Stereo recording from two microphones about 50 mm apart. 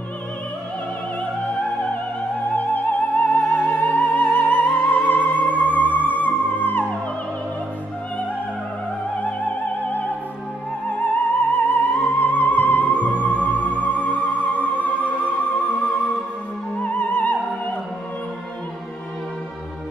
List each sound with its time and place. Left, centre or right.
2.5 s music: left
9.1 s opera: left
10.9 s music: left
16.7 s music: left